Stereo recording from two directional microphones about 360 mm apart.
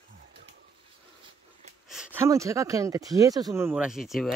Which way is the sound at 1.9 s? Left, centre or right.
Centre.